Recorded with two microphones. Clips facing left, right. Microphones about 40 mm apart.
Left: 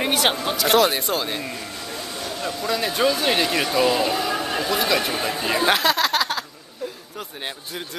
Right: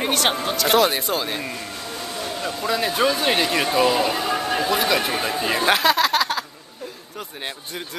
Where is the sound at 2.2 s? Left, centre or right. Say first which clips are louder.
Right 1 dB; right.